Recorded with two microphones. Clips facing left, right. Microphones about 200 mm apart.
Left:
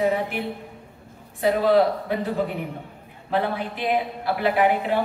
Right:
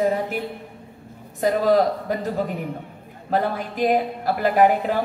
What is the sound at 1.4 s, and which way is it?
Speech, 40° right (ahead or behind).